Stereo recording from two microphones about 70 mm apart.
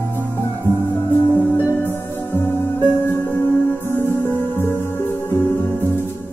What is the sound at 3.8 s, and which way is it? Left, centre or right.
Music, left.